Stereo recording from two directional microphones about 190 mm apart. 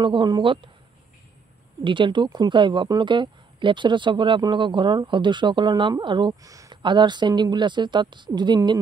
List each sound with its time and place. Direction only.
0.0 s speech: 25° right (ahead or behind)
1.9 s speech: 25° right (ahead or behind)